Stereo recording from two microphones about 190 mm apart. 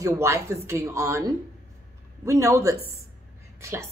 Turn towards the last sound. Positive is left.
turn(degrees=-15)  # may be behind; listen again after turning